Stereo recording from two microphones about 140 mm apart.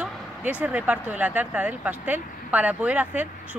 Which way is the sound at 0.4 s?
10° right (ahead or behind).